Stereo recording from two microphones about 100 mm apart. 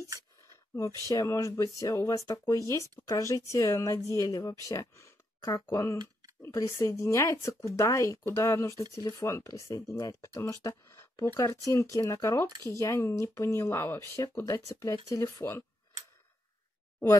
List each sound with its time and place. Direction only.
1.0 s speech: 35° left (ahead or behind)
8.9 s speech: 40° left (ahead or behind)